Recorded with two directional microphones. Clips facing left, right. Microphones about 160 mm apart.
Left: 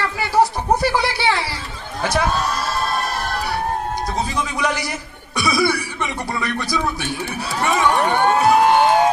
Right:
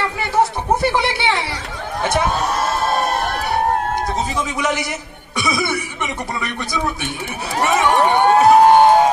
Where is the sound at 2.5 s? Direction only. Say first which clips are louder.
Right 4 dB; 50° right (ahead or behind).